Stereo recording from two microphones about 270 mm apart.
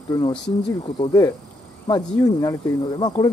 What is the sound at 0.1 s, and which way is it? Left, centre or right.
Speech, centre.